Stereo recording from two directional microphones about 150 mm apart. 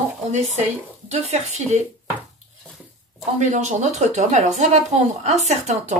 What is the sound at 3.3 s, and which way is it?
Speech, 50° right (ahead or behind).